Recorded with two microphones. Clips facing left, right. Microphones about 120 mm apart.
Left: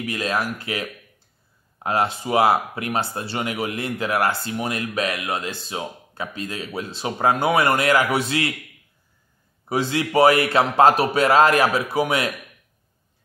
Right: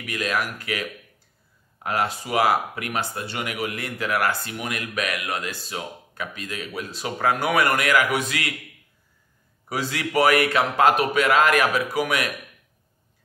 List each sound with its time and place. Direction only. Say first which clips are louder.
0.0 s speech: left 2 dB; 30° left (ahead or behind)
9.7 s speech: left 5 dB; 25° left (ahead or behind)